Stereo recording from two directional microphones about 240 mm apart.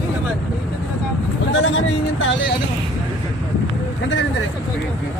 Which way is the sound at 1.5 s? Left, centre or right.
Left.